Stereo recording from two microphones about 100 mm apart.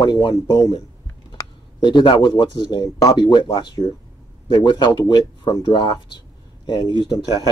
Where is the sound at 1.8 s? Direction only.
50° left (ahead or behind).